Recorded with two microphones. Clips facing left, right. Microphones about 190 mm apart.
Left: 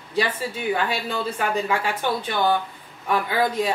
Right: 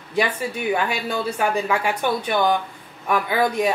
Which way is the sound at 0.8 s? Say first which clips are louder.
Right 1 dB; 15° right (ahead or behind).